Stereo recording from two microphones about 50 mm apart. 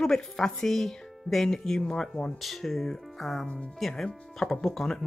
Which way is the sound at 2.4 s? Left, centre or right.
Centre.